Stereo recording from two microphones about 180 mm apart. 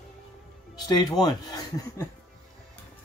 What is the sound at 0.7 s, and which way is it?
Speech, 25° left (ahead or behind).